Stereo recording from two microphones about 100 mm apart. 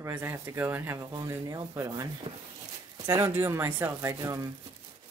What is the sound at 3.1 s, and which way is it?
Speech, 25° right (ahead or behind).